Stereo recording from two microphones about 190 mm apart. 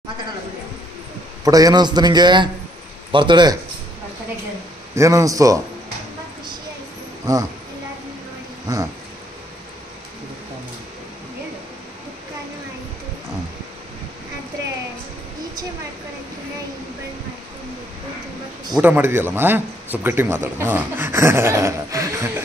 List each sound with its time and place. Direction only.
1.4 s a man's voice: 20° right (ahead or behind)
4.9 s speech: 15° right (ahead or behind)
7.3 s a man's voice: 20° right (ahead or behind)
18.8 s speech: 10° right (ahead or behind)